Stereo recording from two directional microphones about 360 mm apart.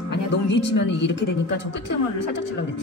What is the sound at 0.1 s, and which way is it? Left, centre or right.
Speech, left.